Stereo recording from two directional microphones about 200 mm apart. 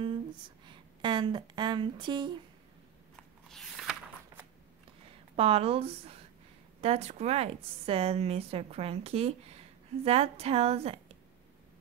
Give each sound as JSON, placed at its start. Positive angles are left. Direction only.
{"t": 0.7, "sound": "speech", "side_deg": -25}
{"t": 3.4, "sound": "biting", "side_deg": 0}
{"t": 5.3, "sound": "a woman's voice", "side_deg": -30}